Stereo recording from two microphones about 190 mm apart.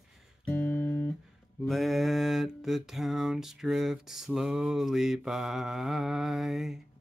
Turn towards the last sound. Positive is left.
turn(degrees=0)  # may be behind; listen again after turning